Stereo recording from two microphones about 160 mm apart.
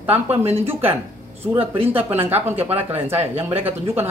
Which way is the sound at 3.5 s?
40° right (ahead or behind).